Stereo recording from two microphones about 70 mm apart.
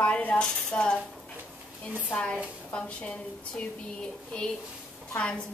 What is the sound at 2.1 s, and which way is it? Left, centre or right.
Speech, centre.